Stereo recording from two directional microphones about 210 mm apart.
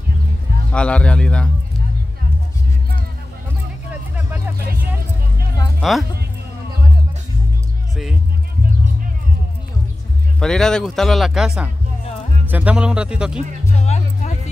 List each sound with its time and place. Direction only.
0.7 s speech: 5° left (ahead or behind)
5.8 s speech: centre (ahead or behind)
10.4 s speech: 5° left (ahead or behind)
13.7 s music: 30° left (ahead or behind)